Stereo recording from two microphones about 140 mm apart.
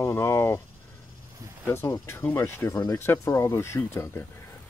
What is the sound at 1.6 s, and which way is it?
Speech, 20° left (ahead or behind).